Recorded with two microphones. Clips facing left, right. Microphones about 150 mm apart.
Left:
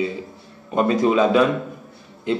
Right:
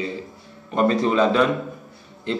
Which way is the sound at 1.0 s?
15° left (ahead or behind).